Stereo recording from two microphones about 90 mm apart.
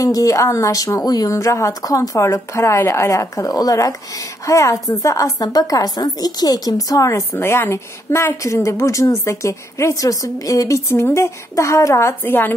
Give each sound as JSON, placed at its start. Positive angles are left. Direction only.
{"t": 0.0, "sound": "a woman's voice", "side_deg": 40}